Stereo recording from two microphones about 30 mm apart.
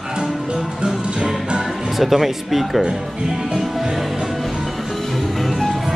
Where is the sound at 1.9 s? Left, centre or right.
Centre.